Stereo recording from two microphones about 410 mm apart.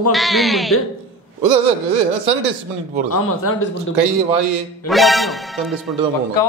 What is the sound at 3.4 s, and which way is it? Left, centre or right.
Speech, left.